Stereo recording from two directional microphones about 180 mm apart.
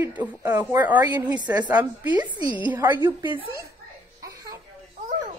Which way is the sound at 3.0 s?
10° right (ahead or behind).